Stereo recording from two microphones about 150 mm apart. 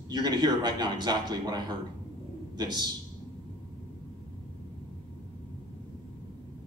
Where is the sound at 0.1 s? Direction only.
25° right (ahead or behind).